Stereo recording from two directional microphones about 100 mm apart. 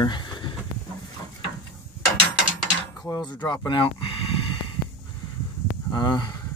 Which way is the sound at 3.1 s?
45° left (ahead or behind).